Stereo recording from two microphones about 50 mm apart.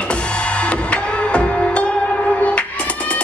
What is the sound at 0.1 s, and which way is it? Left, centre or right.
Music, left.